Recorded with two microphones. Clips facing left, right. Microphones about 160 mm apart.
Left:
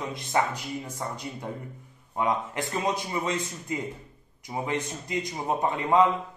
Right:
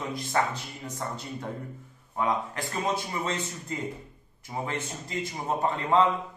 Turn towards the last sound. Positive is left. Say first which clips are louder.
# left 1 dB
turn(degrees=15)  # may be behind; listen again after turning